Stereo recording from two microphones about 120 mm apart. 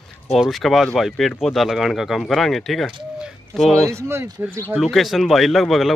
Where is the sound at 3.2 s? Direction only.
Centre (ahead or behind).